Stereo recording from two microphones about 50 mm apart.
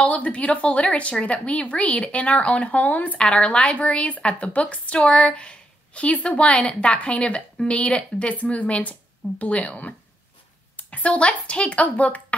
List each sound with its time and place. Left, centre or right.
0.0 s a woman's voice: left
3.2 s a woman's voice: left